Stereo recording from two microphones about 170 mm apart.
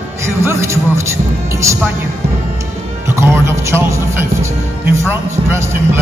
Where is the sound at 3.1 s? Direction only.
15° right (ahead or behind).